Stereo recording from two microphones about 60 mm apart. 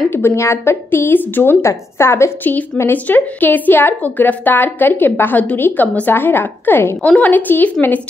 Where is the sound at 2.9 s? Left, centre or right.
Left.